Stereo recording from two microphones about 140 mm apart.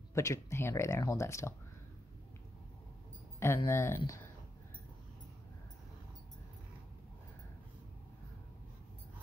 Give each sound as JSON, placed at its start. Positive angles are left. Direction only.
{"t": 0.1, "sound": "speech", "side_deg": 20}
{"t": 3.3, "sound": "speech", "side_deg": 20}